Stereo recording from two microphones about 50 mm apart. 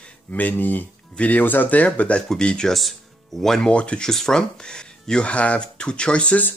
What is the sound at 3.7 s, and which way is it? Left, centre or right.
Speech, left.